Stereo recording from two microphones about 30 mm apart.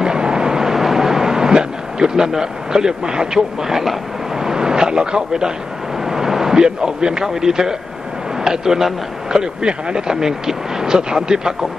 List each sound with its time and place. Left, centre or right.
0.0 s vehicle: right
3.6 s a man's voice: centre
4.4 s a sound: right
6.5 s a man's voice: right